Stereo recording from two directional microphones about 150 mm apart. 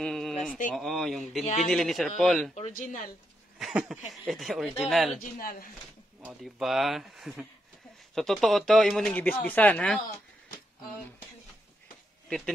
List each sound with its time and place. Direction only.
0.0 s a sound: centre (ahead or behind)
0.7 s speech: centre (ahead or behind)
1.4 s a man's voice: 50° left (ahead or behind)
1.7 s speech: centre (ahead or behind)
2.5 s speech: 55° left (ahead or behind)
3.5 s a sound: 5° right (ahead or behind)
4.3 s speech: centre (ahead or behind)
5.2 s speech: 70° left (ahead or behind)
6.2 s speech: centre (ahead or behind)
12.3 s speech: 5° left (ahead or behind)